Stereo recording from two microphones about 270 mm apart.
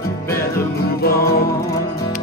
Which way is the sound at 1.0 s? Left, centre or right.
Left.